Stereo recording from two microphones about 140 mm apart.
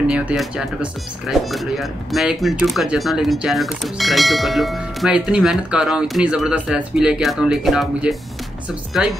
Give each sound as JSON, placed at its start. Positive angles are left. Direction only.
{"t": 0.0, "sound": "speech", "side_deg": -5}